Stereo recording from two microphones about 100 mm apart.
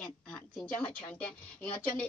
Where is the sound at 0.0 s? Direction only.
10° left (ahead or behind).